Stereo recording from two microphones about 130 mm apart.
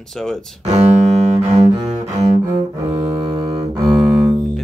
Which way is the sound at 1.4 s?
60° right (ahead or behind).